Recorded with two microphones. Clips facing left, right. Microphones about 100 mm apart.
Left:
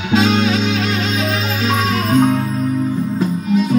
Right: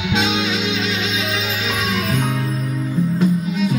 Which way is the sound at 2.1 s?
35° left (ahead or behind).